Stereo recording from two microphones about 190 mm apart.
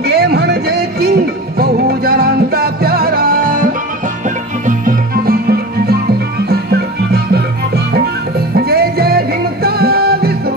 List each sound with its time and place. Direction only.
0.0 s music: 55° right (ahead or behind)